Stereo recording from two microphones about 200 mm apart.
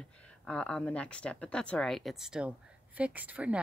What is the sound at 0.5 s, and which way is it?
Speech, 5° left (ahead or behind).